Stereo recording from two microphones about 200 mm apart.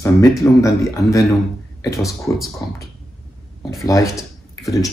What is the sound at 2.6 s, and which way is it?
Speech, 15° left (ahead or behind).